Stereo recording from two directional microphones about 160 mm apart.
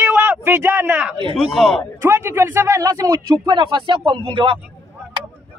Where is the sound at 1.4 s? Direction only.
Centre (ahead or behind).